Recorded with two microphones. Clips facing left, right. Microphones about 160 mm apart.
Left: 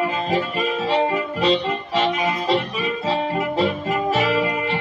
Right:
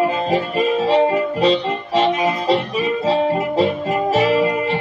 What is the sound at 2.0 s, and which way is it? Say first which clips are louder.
Music: right 4 dB; 25° right (ahead or behind).